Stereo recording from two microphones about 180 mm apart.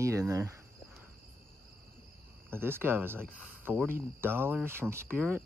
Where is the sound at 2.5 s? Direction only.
10° right (ahead or behind).